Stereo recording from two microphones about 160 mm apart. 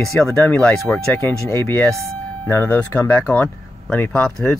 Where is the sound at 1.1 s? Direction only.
15° left (ahead or behind).